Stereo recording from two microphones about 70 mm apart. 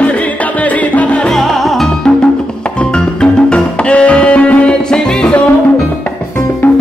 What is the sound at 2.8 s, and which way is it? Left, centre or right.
Music, centre.